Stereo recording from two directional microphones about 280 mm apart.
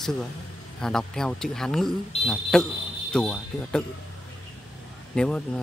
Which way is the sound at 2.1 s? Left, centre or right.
Left.